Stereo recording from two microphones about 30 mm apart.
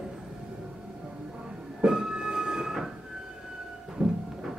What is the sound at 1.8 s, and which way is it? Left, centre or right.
Music, right.